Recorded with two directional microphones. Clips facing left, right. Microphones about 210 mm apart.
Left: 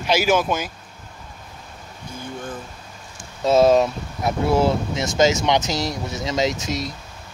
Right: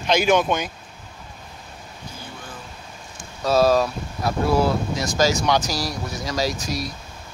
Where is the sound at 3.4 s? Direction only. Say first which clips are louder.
Left 3 dB; 20° left (ahead or behind).